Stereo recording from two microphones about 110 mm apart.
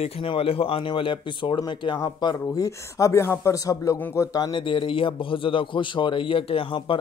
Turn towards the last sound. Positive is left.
turn(degrees=55)  # may be behind; listen again after turning